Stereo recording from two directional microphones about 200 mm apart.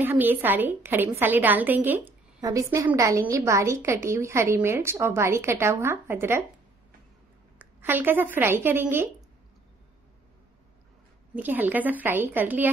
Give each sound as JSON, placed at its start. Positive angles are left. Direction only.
{"t": 0.0, "sound": "a woman's voice", "side_deg": -10}
{"t": 7.5, "sound": "a woman's voice", "side_deg": -10}
{"t": 11.3, "sound": "a woman's voice", "side_deg": -10}